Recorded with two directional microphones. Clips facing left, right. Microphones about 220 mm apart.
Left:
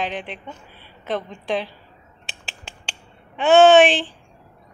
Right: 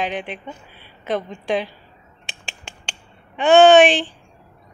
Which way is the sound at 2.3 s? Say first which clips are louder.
Right 1 dB; 5° left (ahead or behind).